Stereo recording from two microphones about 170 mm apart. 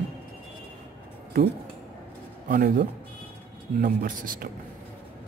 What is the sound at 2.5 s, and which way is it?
A man's voice, 55° right (ahead or behind).